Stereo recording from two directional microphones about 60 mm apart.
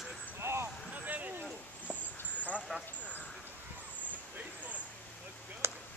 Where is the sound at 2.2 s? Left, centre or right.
Left.